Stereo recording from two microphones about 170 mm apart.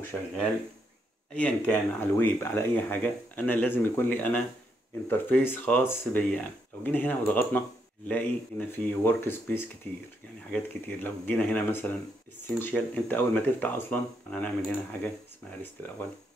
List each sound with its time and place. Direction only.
0.1 s speech: 10° left (ahead or behind)
1.3 s speech: 10° left (ahead or behind)